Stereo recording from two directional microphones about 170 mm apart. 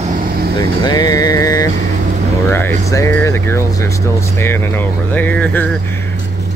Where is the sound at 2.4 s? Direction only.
10° left (ahead or behind).